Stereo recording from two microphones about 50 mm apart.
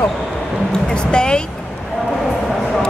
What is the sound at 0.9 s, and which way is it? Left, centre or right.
Speech, centre.